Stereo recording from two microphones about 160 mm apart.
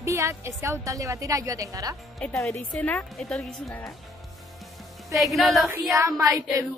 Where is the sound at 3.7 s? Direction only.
20° left (ahead or behind).